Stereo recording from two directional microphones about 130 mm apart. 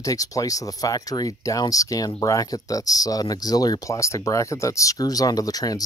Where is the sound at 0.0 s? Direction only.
25° left (ahead or behind).